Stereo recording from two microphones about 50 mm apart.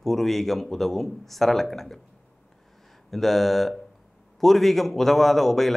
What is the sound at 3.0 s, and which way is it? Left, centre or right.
A man's voice, centre.